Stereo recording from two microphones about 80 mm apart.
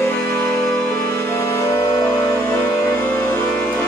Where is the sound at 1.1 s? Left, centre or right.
Left.